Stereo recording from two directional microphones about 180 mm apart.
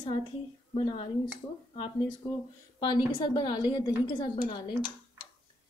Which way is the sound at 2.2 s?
15° left (ahead or behind).